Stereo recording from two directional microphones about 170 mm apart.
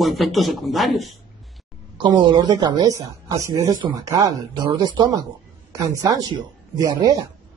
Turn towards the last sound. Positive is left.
turn(degrees=-25)  # may be behind; listen again after turning